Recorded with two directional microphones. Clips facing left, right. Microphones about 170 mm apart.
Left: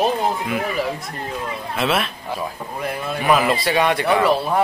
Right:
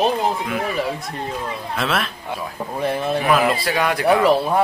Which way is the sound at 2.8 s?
25° right (ahead or behind).